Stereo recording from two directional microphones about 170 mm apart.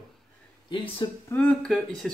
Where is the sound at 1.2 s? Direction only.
5° left (ahead or behind).